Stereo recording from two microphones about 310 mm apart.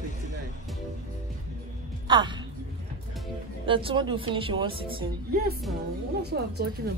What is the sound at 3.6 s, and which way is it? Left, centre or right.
Speech, centre.